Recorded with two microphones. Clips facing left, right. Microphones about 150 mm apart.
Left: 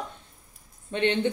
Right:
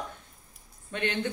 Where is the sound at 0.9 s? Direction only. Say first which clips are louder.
Left 6 dB; 20° left (ahead or behind).